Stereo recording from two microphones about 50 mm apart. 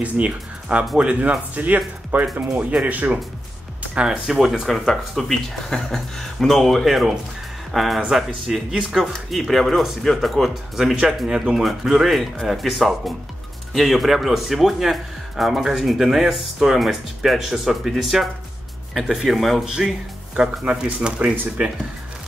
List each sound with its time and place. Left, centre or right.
0.0 s speech: right
3.9 s speech: centre
4.3 s a man's voice: centre
11.2 s a man's voice: centre